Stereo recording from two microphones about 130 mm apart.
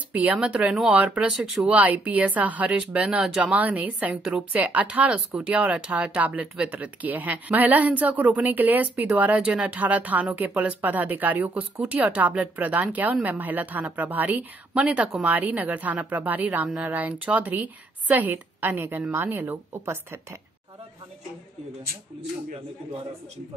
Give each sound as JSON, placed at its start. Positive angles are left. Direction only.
{"t": 0.1, "sound": "speech", "side_deg": -10}